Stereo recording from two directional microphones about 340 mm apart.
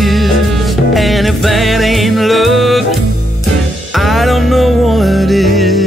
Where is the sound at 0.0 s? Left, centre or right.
Centre.